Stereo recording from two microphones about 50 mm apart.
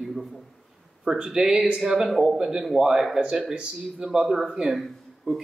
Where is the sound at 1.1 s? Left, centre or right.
Centre.